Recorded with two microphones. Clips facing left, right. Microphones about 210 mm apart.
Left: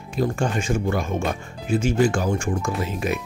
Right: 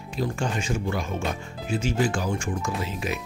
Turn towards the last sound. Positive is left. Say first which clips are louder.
# left 4 dB
turn(degrees=50)  # may be behind; listen again after turning